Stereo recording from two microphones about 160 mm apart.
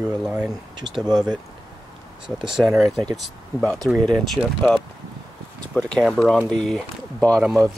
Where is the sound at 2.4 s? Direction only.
5° right (ahead or behind).